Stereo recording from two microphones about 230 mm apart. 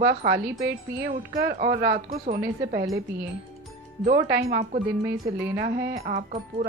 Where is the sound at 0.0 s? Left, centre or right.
Right.